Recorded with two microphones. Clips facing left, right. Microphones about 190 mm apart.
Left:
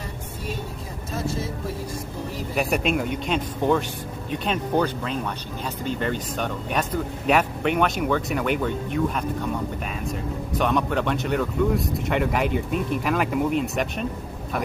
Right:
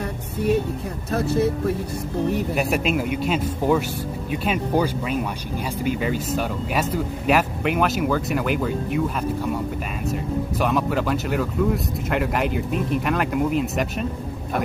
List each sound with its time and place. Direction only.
1.1 s speech: 65° right (ahead or behind)
2.5 s speech: centre (ahead or behind)